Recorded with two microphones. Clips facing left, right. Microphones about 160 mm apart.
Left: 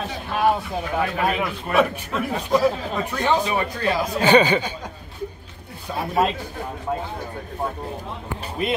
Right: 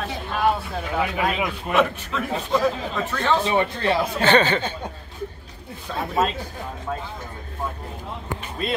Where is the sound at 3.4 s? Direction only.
25° right (ahead or behind).